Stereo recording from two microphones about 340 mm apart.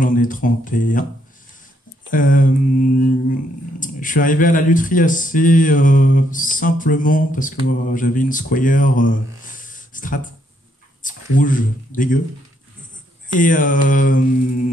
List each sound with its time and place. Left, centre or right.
0.0 s speech: left
2.0 s speech: left
13.3 s speech: left